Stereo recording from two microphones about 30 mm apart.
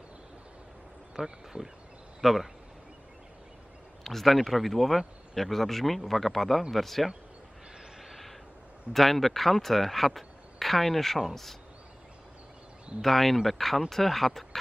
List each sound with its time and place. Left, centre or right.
1.1 s speech: centre
2.2 s speech: centre
4.0 s speech: centre
8.0 s a sound: centre
8.9 s speech: centre
13.0 s speech: centre